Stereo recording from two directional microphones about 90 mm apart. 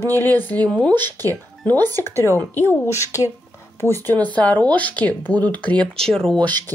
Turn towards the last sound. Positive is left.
turn(degrees=25)  # may be behind; listen again after turning